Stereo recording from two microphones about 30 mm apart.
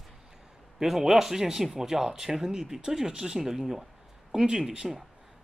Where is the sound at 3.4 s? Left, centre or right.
Centre.